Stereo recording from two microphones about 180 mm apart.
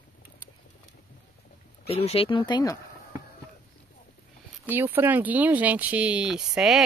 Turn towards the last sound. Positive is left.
turn(degrees=-5)  # may be behind; listen again after turning